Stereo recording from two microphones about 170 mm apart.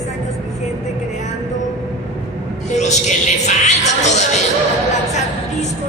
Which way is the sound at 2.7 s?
45° left (ahead or behind).